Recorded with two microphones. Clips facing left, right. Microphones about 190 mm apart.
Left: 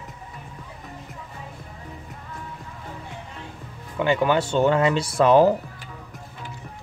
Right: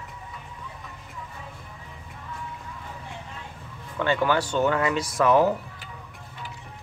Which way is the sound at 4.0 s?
15° left (ahead or behind).